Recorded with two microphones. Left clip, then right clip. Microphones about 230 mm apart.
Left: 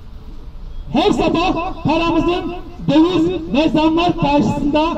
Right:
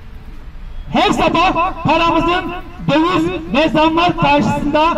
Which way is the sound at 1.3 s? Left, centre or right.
Right.